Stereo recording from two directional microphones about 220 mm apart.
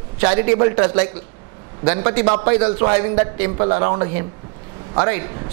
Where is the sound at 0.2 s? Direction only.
20° right (ahead or behind).